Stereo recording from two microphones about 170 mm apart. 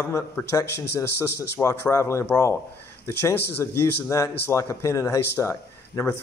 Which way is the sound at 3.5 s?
15° left (ahead or behind).